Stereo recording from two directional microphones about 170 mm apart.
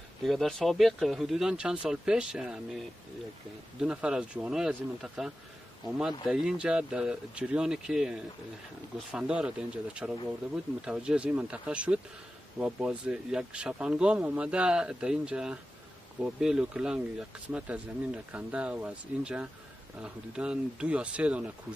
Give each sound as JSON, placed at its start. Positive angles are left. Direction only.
{"t": 0.2, "sound": "speech", "side_deg": 0}
{"t": 3.8, "sound": "speech", "side_deg": -5}